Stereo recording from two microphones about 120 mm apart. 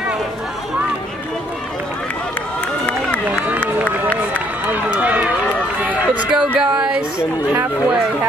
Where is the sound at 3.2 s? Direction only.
10° right (ahead or behind).